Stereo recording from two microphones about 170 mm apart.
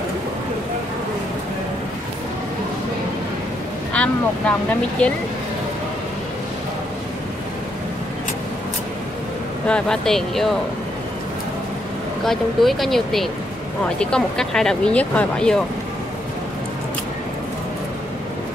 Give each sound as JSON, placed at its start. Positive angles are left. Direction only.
{"t": 3.9, "sound": "speech", "side_deg": 5}
{"t": 9.7, "sound": "speech", "side_deg": 5}
{"t": 12.3, "sound": "speech", "side_deg": 0}